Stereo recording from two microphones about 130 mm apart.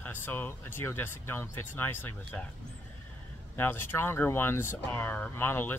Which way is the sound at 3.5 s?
15° left (ahead or behind).